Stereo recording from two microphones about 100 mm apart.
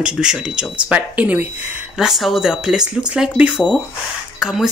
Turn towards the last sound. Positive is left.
turn(degrees=0)  # may be behind; listen again after turning